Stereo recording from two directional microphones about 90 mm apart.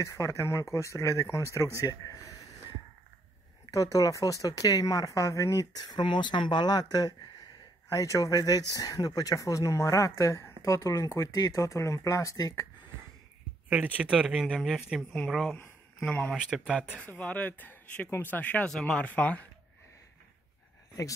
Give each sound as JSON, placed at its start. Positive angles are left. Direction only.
{"t": 0.0, "sound": "speech", "side_deg": 35}
{"t": 3.7, "sound": "speech", "side_deg": 40}
{"t": 11.3, "sound": "speech", "side_deg": 45}
{"t": 13.7, "sound": "speech", "side_deg": -20}
{"t": 15.5, "sound": "a sound", "side_deg": 20}
{"t": 16.3, "sound": "speech", "side_deg": 0}
{"t": 17.0, "sound": "speech", "side_deg": 15}
{"t": 18.8, "sound": "speech", "side_deg": 5}